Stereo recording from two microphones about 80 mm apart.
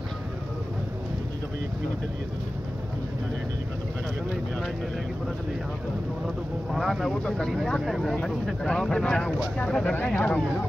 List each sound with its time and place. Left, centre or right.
6.2 s speech: centre